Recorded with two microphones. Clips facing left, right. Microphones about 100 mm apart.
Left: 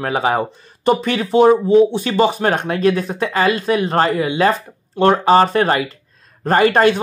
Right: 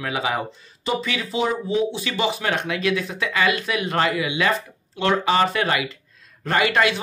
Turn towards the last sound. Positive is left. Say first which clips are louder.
# left 7 dB
turn(degrees=40)  # may be behind; listen again after turning